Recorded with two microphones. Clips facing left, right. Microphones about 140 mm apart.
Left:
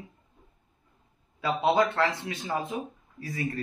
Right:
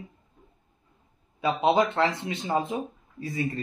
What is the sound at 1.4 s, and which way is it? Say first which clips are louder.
Speech: right 2 dB; 20° right (ahead or behind).